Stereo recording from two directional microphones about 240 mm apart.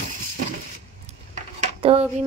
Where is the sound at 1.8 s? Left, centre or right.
Right.